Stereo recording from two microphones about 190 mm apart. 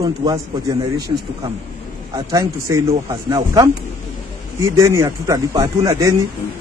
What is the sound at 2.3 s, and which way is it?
A man's voice, 15° right (ahead or behind).